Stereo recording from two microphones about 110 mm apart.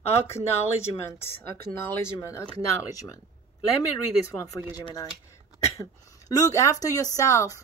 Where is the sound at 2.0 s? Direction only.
25° left (ahead or behind).